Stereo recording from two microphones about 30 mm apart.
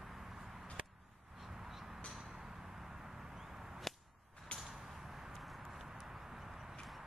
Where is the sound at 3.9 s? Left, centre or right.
Centre.